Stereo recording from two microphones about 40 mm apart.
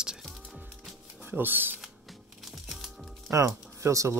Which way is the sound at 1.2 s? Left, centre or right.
Right.